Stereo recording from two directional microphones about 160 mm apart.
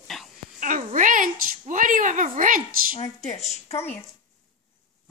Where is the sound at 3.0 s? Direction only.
45° left (ahead or behind).